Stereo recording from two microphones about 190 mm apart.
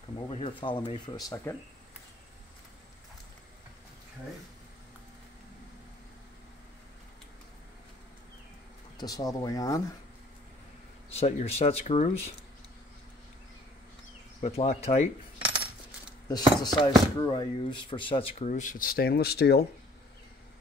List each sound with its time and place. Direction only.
0.3 s speech: 30° left (ahead or behind)
8.9 s speech: 20° left (ahead or behind)
11.1 s speech: 35° left (ahead or behind)
14.4 s speech: 35° left (ahead or behind)
16.3 s speech: 20° left (ahead or behind)
18.5 s speech: 45° left (ahead or behind)